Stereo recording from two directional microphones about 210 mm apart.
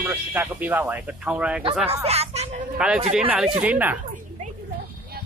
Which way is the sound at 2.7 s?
5° right (ahead or behind).